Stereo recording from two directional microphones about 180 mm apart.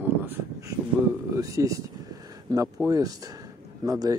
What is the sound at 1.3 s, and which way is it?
Speech, 20° right (ahead or behind).